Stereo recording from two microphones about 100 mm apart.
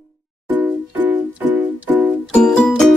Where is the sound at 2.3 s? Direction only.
5° left (ahead or behind).